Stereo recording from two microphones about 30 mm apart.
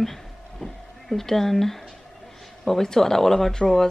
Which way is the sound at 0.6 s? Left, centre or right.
Centre.